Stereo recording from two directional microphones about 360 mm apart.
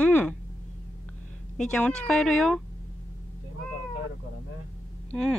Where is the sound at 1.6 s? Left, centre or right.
Centre.